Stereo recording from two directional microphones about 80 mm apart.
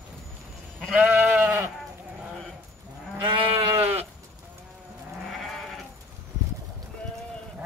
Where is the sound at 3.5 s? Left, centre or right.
Right.